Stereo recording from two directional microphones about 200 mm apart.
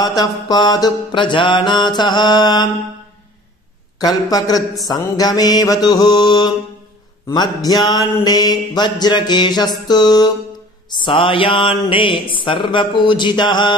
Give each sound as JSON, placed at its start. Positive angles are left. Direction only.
{"t": 0.2, "sound": "mantra", "side_deg": 20}
{"t": 4.0, "sound": "mantra", "side_deg": 20}